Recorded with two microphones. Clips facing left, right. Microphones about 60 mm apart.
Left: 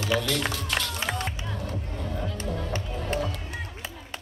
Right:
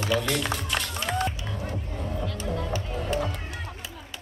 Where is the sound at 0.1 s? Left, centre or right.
Centre.